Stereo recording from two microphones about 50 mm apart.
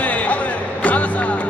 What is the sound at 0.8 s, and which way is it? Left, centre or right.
Music, left.